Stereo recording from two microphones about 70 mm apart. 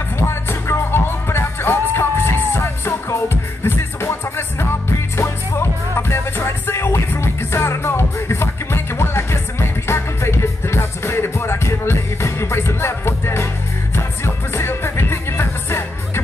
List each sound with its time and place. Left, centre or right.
0.3 s music: left